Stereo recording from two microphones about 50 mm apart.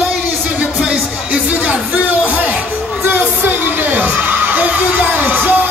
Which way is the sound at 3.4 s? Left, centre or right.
Right.